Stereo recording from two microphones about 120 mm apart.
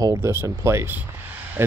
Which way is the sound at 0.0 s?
20° right (ahead or behind).